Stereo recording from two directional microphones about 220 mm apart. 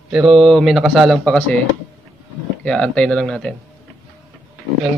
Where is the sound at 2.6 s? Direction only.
5° left (ahead or behind).